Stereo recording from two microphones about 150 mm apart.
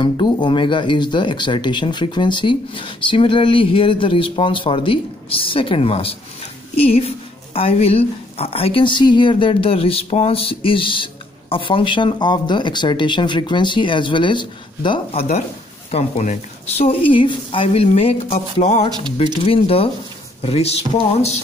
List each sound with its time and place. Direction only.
0.0 s speech: 30° left (ahead or behind)